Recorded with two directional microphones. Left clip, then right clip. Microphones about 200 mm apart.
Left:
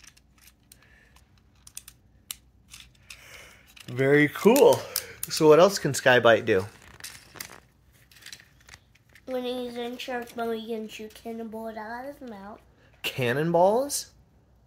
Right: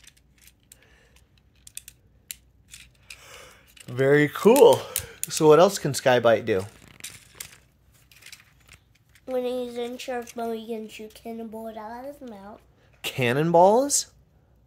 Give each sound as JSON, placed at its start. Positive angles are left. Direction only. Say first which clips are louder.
{"t": 3.2, "sound": "a sound", "louder": "right 1 dB", "side_deg": -25}
{"t": 5.3, "sound": "speech", "louder": "right 1 dB", "side_deg": -35}
{"t": 5.8, "sound": "a woman's voice", "louder": "left 1 dB", "side_deg": -15}
{"t": 9.2, "sound": "a sound", "louder": "right 3 dB", "side_deg": -30}
{"t": 10.4, "sound": "a woman's voice", "louder": "even", "side_deg": -15}
{"t": 13.0, "sound": "speech", "louder": "right 2 dB", "side_deg": -25}